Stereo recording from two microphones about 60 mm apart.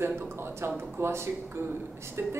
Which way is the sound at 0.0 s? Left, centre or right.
Right.